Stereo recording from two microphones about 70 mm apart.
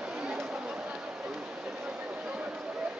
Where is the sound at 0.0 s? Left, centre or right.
Centre.